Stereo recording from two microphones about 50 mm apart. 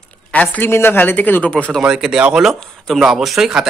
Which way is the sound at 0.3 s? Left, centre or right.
Left.